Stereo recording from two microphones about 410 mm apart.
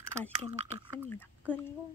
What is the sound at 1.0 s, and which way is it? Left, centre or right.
Speech, centre.